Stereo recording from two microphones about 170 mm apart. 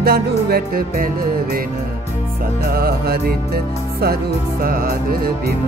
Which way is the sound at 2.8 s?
60° right (ahead or behind).